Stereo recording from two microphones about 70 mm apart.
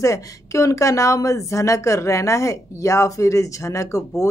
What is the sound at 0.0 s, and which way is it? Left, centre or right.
Speech, left.